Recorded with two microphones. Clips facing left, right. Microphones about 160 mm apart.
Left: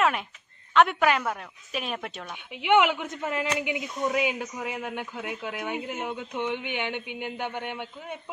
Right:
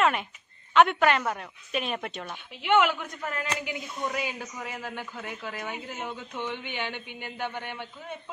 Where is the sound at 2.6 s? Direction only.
15° left (ahead or behind).